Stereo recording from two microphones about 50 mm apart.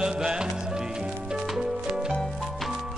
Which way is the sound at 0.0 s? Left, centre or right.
Centre.